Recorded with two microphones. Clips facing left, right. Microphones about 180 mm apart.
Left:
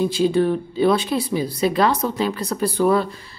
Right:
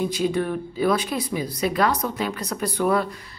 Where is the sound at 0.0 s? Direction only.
30° left (ahead or behind).